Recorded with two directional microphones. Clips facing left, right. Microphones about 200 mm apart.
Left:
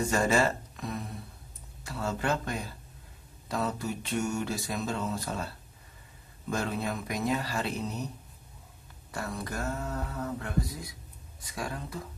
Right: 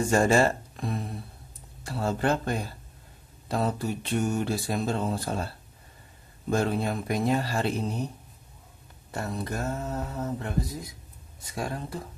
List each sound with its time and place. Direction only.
0.1 s speech: 30° right (ahead or behind)
1.9 s mantra: 30° right (ahead or behind)
6.5 s mantra: 30° right (ahead or behind)
9.1 s mantra: 25° right (ahead or behind)